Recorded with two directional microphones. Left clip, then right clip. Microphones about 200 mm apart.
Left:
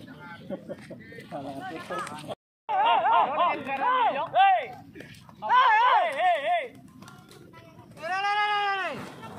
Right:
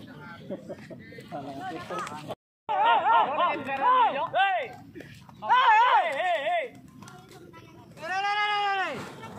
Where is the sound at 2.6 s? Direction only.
5° left (ahead or behind).